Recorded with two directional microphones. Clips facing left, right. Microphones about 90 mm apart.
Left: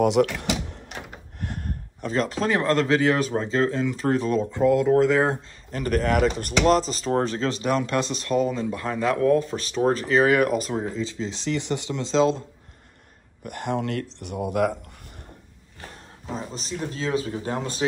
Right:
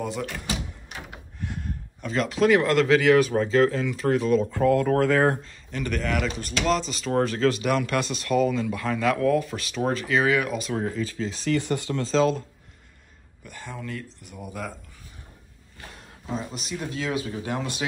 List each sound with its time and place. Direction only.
0.0 s door: 80° left
1.4 s gasp: 55° left (ahead or behind)
2.0 s speech: 35° left (ahead or behind)
4.6 s speech: 20° left (ahead or behind)
5.7 s speech: 40° left (ahead or behind)
10.7 s speech: 25° left (ahead or behind)
13.4 s speech: 60° left (ahead or behind)
16.3 s speech: 35° left (ahead or behind)